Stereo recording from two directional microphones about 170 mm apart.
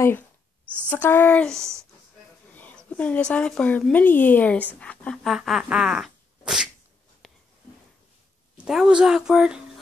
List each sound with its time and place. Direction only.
0.8 s speech: 10° left (ahead or behind)
8.5 s a woman's voice: 5° right (ahead or behind)